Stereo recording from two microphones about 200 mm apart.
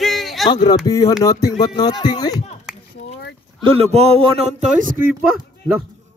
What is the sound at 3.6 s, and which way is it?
Speech, 30° right (ahead or behind).